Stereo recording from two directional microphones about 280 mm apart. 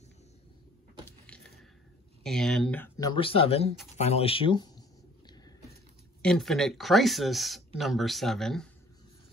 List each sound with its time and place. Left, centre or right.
1.0 s a sound: centre
2.2 s speech: centre; by 3.7 s left
3.9 s computer keyboard: left
6.2 s speech: centre